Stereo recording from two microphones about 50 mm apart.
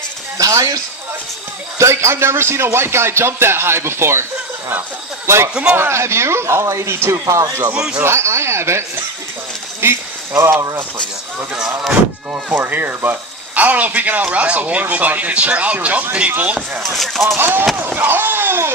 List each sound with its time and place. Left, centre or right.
1.8 s speech: right
5.5 s speech: right
5.8 s speech: right
8.0 s speech: right
12.5 s a man's voice: right
16.9 s speech: centre
17.4 s speech: right
17.7 s slam: right